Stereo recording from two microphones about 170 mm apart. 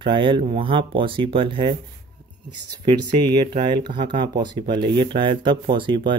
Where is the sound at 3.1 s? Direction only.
25° right (ahead or behind).